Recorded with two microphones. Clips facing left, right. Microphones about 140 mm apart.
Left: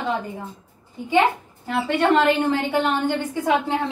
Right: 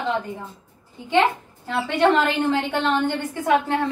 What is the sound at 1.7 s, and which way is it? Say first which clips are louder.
A woman's voice: even; centre (ahead or behind).